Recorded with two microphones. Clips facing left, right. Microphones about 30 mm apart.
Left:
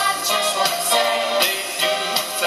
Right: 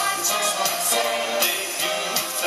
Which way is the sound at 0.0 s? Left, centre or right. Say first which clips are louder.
Left 4 dB; left.